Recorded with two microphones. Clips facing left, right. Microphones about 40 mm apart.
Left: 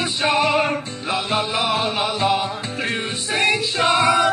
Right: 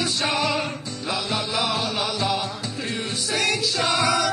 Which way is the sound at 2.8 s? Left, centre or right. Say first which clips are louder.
Left 5 dB; left.